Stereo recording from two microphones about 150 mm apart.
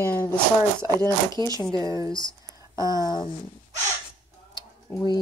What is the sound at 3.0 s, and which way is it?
Speech, 30° left (ahead or behind).